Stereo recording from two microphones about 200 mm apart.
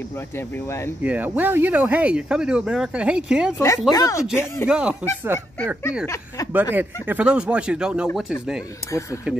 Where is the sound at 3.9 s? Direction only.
15° left (ahead or behind).